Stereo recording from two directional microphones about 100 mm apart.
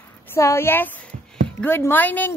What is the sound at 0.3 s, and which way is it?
A woman's voice, 25° left (ahead or behind).